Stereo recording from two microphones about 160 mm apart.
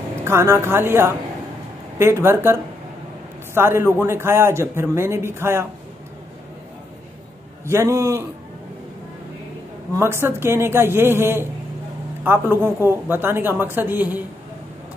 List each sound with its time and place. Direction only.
0.2 s a man's voice: 15° right (ahead or behind)
7.6 s a man's voice: 15° right (ahead or behind)
9.9 s a man's voice: 15° right (ahead or behind)